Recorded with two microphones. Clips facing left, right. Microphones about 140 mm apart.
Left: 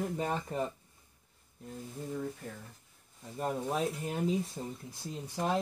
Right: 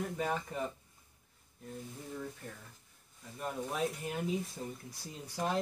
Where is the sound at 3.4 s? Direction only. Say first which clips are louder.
Left 3 dB; 30° left (ahead or behind).